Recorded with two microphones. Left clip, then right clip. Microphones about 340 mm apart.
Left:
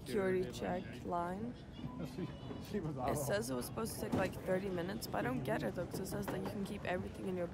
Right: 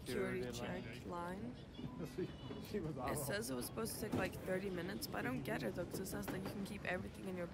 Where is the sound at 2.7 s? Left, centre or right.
Left.